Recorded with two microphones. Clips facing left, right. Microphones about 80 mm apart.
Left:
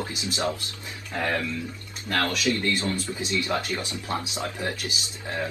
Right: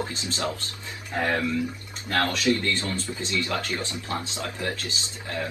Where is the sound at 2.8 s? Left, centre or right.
Left.